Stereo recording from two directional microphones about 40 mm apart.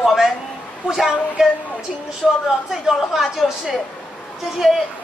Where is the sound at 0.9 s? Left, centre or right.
Centre.